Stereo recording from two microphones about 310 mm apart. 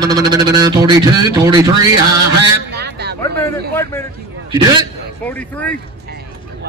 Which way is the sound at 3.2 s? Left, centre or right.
Centre.